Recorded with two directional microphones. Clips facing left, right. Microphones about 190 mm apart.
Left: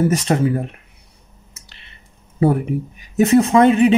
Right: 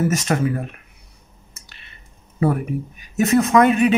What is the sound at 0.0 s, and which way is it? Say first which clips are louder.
Speech: left 3 dB; 30° left (ahead or behind).